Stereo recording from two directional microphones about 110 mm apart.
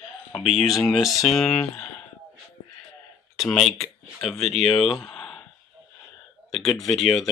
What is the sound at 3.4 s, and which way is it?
Speech, centre (ahead or behind).